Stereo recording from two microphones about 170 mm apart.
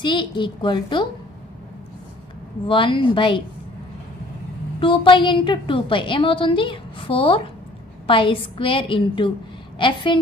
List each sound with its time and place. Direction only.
0.0 s a woman's voice: 30° left (ahead or behind)
2.7 s a woman's voice: 30° left (ahead or behind)
4.7 s a woman's voice: 30° left (ahead or behind)